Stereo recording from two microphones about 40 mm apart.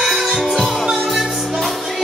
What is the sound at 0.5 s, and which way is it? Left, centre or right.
Music, centre.